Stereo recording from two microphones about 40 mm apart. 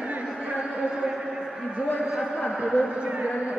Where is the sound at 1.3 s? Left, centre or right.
Centre.